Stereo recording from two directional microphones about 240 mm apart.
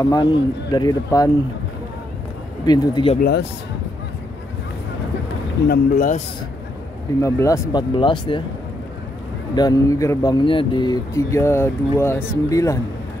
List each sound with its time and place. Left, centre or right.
0.0 s speech: centre
2.6 s speech: centre
3.2 s speech: left
5.7 s speech: left
7.2 s speech: centre
9.6 s speech: centre